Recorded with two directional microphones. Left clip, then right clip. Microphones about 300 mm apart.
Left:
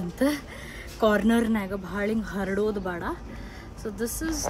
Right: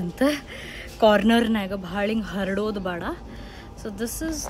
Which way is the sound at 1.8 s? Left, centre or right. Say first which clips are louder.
Right 3 dB; centre.